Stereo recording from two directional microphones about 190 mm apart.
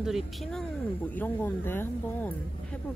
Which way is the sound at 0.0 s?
Centre (ahead or behind).